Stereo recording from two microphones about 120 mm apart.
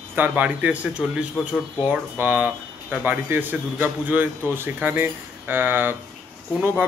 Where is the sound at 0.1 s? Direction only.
15° right (ahead or behind).